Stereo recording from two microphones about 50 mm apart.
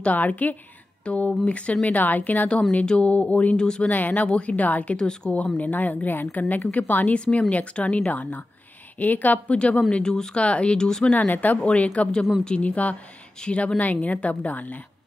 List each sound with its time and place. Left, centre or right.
0.0 s a woman's voice: left
2.7 s a woman's voice: left
3.5 s speech: centre
3.9 s a woman's voice: left
4.9 s speech: centre
5.3 s a woman's voice: left
7.2 s a woman's voice: left
9.6 s a woman's voice: left
10.4 s a woman's voice: left
11.1 s a woman's voice: left